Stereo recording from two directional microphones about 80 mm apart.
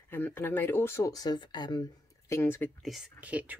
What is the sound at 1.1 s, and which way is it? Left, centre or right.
Speech, left.